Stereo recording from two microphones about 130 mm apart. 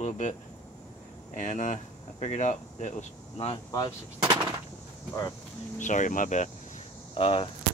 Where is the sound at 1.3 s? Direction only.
70° left (ahead or behind).